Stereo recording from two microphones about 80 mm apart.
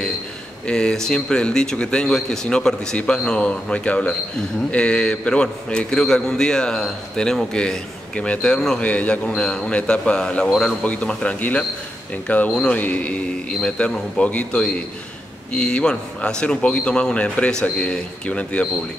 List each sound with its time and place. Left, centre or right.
0.7 s speech: centre